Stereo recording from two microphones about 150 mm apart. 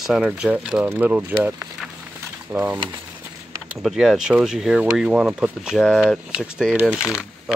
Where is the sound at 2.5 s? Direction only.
25° right (ahead or behind).